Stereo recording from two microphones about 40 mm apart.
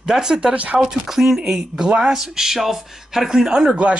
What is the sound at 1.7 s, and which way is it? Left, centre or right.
Speech, right.